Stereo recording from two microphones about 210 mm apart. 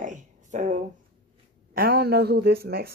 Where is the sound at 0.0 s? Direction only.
35° right (ahead or behind).